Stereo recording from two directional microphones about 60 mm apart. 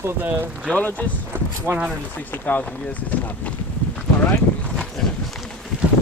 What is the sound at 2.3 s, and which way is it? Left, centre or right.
Speech, left.